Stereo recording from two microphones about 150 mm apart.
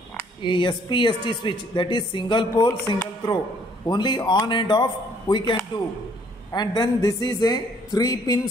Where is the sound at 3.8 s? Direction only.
30° left (ahead or behind).